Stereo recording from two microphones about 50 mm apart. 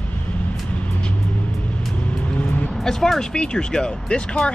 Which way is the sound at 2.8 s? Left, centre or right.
Centre.